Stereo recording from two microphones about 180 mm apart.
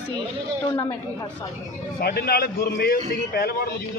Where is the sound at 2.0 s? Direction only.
60° left (ahead or behind).